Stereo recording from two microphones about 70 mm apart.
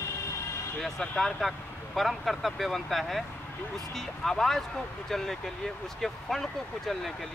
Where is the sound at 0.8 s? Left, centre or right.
Centre.